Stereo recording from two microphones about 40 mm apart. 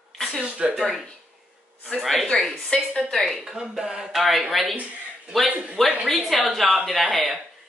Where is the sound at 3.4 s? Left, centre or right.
Centre.